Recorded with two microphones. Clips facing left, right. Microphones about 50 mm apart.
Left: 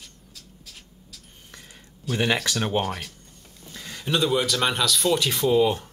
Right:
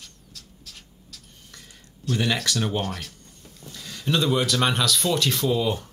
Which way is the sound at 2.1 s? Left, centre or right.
Left.